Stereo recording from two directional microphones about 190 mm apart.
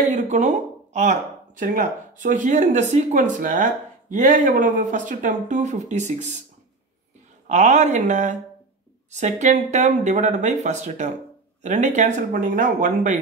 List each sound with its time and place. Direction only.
0.0 s speech: 40° right (ahead or behind)
7.4 s speech: 40° right (ahead or behind)